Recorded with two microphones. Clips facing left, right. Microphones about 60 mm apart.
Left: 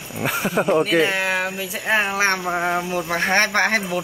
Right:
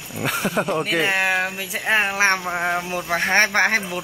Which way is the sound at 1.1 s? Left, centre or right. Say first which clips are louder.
Right 1 dB; right.